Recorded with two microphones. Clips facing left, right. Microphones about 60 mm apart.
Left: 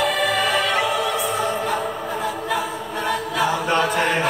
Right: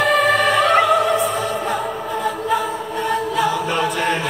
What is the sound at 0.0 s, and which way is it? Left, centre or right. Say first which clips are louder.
Music: right 5 dB; right.